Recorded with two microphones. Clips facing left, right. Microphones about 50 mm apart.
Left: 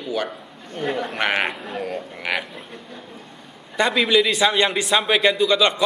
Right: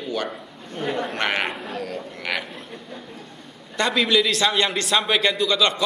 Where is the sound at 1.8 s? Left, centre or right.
Centre.